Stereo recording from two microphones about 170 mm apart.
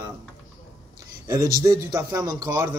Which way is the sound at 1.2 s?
20° right (ahead or behind).